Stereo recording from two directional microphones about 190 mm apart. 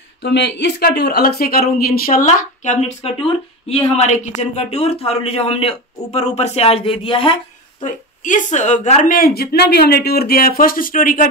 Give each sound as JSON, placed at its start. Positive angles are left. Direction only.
{"t": 0.2, "sound": "speech", "side_deg": 65}
{"t": 7.8, "sound": "a woman's voice", "side_deg": 40}